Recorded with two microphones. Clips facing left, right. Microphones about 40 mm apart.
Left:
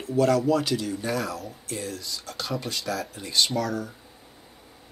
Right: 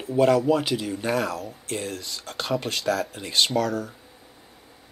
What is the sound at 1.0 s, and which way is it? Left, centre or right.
Speech, right.